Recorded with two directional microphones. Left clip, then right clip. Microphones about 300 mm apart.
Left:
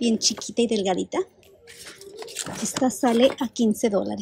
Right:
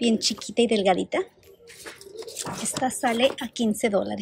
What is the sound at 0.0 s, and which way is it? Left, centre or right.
Speech, centre.